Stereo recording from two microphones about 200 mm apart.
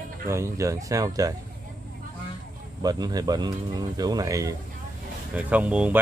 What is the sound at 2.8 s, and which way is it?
Speech, 20° right (ahead or behind).